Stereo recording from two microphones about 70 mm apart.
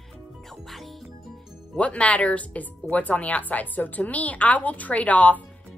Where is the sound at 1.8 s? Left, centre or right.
Centre.